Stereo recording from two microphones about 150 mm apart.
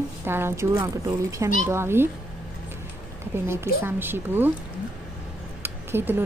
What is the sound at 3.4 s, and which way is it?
A woman's voice, 15° right (ahead or behind).